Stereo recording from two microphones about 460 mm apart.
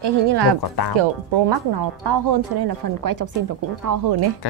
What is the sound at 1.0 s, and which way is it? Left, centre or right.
Speech, right.